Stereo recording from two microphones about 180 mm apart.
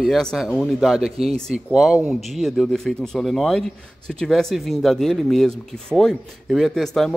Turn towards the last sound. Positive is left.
turn(degrees=0)  # may be behind; listen again after turning